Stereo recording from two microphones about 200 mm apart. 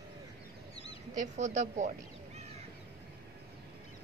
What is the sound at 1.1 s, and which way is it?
Speech, 35° right (ahead or behind).